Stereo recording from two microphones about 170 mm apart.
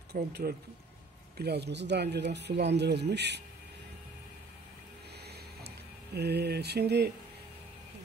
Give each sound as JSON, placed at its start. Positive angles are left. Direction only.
{"t": 0.1, "sound": "speech", "side_deg": -70}
{"t": 6.1, "sound": "speech", "side_deg": -75}